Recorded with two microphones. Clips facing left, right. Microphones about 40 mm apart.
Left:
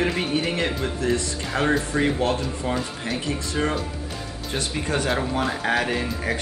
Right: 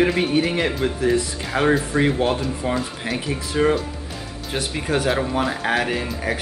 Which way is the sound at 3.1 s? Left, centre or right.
Centre.